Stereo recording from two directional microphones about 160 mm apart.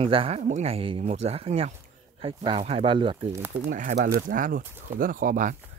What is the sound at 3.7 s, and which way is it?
Speech, 55° right (ahead or behind).